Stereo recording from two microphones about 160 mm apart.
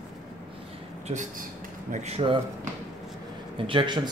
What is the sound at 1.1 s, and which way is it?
Speech, 45° right (ahead or behind).